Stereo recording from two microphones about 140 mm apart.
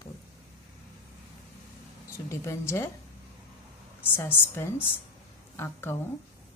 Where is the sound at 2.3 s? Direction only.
20° left (ahead or behind).